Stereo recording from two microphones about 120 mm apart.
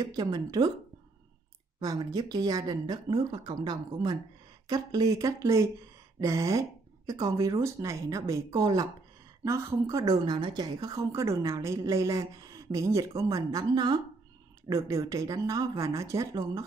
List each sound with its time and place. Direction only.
0.0 s speech: 35° right (ahead or behind)
1.8 s speech: 30° right (ahead or behind)